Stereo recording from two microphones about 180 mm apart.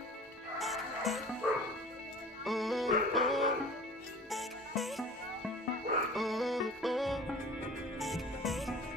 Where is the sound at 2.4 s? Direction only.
Centre (ahead or behind).